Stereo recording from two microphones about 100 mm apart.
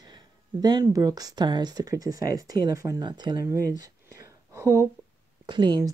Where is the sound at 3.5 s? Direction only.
35° right (ahead or behind).